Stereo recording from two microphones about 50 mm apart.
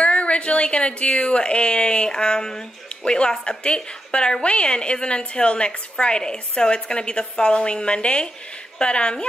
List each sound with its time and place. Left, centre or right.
0.0 s a woman's voice: left